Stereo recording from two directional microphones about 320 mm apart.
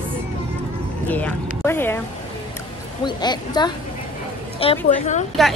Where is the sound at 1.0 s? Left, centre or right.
Centre.